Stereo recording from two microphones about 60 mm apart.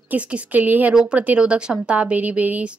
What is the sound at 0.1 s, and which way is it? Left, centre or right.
A woman's voice, right.